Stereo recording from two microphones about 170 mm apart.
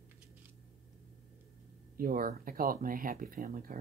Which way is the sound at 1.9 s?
55° right (ahead or behind).